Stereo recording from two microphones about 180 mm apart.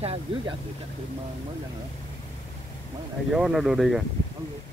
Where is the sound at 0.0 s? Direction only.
35° right (ahead or behind).